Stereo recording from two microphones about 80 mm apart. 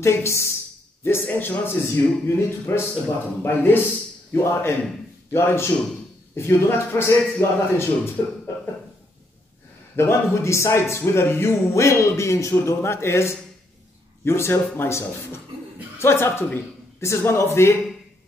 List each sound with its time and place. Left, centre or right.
0.0 s a man's voice: left
9.9 s a man's voice: left